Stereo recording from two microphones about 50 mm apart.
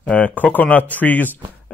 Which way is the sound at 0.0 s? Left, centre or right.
Left.